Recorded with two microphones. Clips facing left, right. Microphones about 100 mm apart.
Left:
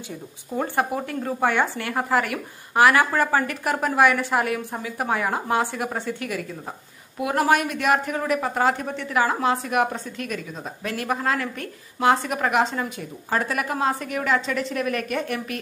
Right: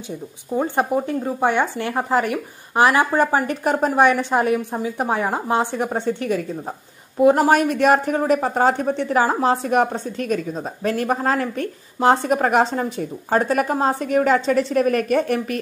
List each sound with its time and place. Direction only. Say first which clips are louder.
0.7 s a woman's voice: right 4 dB; 20° right (ahead or behind); by 15.6 s 45° right (ahead or behind)